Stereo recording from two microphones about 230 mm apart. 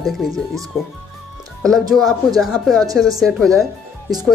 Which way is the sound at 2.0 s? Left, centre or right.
Centre.